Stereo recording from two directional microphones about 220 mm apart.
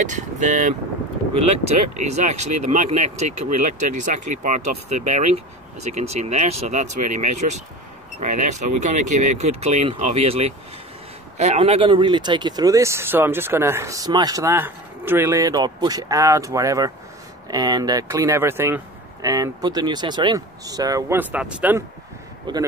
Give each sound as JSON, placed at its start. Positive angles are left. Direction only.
{"t": 0.0, "sound": "speech", "side_deg": -35}
{"t": 2.0, "sound": "speech", "side_deg": -30}
{"t": 22.5, "sound": "speech", "side_deg": -20}